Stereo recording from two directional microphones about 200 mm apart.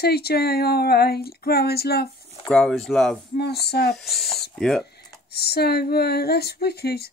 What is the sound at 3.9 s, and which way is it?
Speech, centre (ahead or behind).